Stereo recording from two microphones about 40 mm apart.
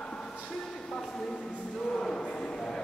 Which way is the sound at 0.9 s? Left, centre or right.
Centre.